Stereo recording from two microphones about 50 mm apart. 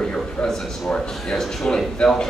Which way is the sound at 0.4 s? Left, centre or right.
Centre.